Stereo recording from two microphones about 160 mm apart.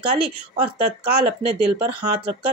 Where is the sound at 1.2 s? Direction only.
35° right (ahead or behind).